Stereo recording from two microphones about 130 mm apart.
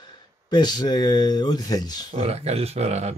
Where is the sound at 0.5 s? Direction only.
35° left (ahead or behind).